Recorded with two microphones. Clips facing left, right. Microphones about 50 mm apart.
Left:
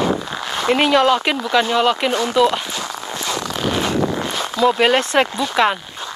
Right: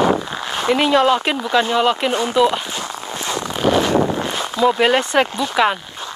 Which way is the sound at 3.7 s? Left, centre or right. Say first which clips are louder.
Right 5 dB; right.